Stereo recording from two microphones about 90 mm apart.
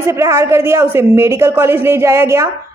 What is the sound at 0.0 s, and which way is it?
Speech, 35° right (ahead or behind).